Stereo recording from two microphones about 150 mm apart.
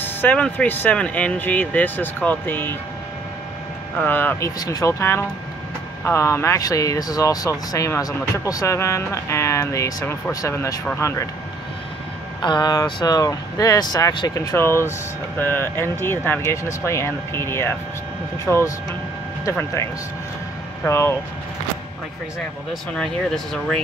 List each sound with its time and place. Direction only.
0.0 s speech: 10° left (ahead or behind)
4.0 s speech: 15° left (ahead or behind)
12.4 s speech: 30° left (ahead or behind)
18.5 s speech: 5° left (ahead or behind)
20.8 s speech: 15° left (ahead or behind)
22.9 s speech: 5° left (ahead or behind)